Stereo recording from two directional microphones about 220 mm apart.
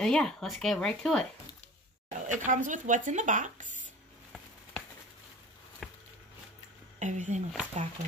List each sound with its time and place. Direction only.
0.0 s speech: 5° left (ahead or behind)
2.1 s speech: 35° right (ahead or behind)
5.8 s a sound: centre (ahead or behind)
7.0 s speech: 35° right (ahead or behind)